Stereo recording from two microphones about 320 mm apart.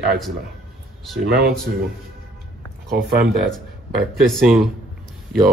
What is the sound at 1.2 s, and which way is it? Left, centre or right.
Speech, right.